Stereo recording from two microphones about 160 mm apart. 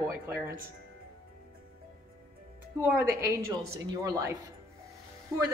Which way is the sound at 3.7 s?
20° right (ahead or behind).